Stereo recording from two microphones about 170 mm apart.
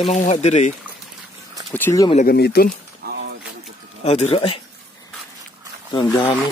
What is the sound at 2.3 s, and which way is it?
Speech, 70° left (ahead or behind).